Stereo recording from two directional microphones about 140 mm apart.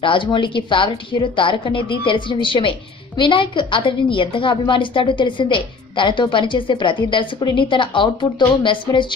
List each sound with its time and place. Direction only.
0.0 s a woman's voice: 35° left (ahead or behind)